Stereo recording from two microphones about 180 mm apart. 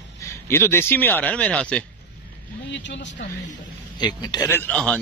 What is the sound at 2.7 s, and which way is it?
Speech, 75° left (ahead or behind).